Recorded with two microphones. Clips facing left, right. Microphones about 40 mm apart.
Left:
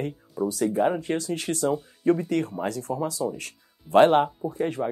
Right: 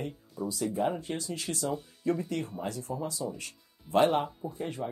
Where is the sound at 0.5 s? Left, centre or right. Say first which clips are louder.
Left 6 dB; left.